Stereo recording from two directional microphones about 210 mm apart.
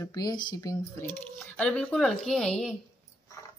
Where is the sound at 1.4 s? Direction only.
5° left (ahead or behind).